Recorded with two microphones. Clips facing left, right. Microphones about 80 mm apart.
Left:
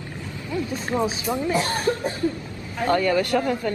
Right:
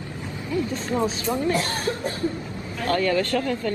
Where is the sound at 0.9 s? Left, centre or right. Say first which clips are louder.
Left 1 dB; centre.